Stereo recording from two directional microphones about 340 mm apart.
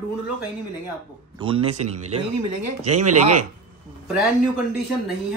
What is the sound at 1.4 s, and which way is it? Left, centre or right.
Speech, centre.